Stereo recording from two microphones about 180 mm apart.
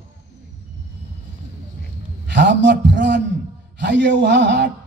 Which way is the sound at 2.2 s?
75° right (ahead or behind).